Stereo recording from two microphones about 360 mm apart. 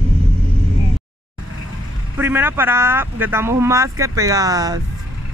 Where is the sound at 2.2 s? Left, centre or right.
Centre.